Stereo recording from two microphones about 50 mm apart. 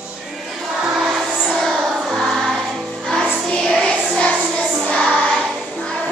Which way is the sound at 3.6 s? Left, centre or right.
Centre.